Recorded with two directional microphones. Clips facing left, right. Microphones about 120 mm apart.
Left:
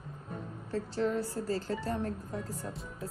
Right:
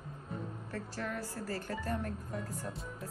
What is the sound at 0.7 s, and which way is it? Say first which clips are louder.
A woman's voice: left 10 dB; 25° left (ahead or behind).